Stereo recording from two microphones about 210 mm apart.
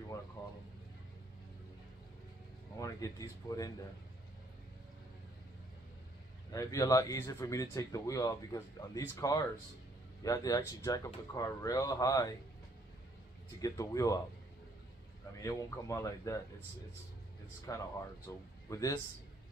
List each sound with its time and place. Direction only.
2.8 s speech: 15° left (ahead or behind)
6.5 s speech: 15° left (ahead or behind)
13.6 s speech: 15° left (ahead or behind)
15.4 s speech: 15° left (ahead or behind)
17.7 s speech: 15° left (ahead or behind)